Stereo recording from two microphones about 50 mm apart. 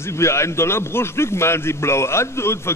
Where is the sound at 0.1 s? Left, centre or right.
Left.